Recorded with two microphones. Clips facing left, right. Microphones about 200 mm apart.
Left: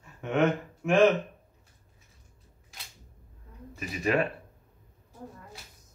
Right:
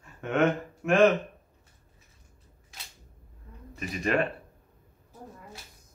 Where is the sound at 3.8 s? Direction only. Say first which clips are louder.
Even; 5° left (ahead or behind).